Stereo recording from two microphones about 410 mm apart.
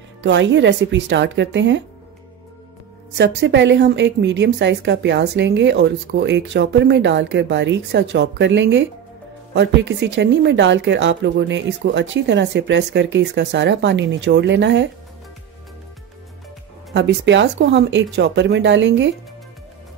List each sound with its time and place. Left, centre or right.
0.2 s a woman's voice: right
3.2 s a woman's voice: right
16.9 s a woman's voice: right